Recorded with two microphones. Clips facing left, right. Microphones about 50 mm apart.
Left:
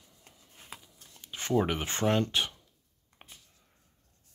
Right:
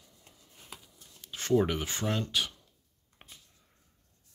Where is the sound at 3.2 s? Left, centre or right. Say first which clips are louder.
Left 1 dB; centre.